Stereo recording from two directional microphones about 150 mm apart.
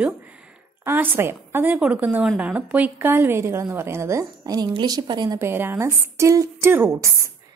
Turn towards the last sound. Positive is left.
turn(degrees=-20)  # may be behind; listen again after turning